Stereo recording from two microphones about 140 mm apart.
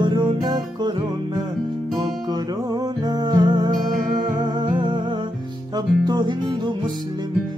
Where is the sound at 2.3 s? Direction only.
30° right (ahead or behind).